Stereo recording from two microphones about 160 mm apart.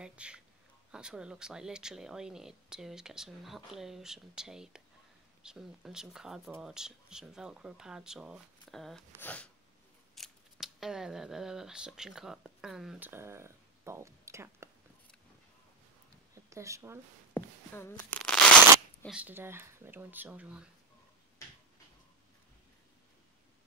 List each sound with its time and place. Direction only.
0.0 s a sound: 5° right (ahead or behind)
0.9 s speech: 5° right (ahead or behind)
13.1 s speech: 15° right (ahead or behind)
16.4 s speech: 20° right (ahead or behind)
17.3 s a sound: 15° left (ahead or behind)
19.0 s speech: 10° right (ahead or behind)